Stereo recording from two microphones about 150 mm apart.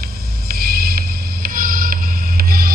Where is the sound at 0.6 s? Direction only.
90° right.